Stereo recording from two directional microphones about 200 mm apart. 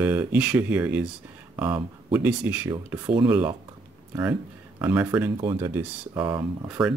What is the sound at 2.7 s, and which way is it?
Speech, 20° right (ahead or behind).